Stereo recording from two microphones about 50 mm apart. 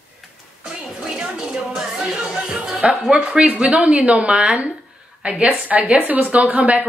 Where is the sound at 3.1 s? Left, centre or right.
Centre.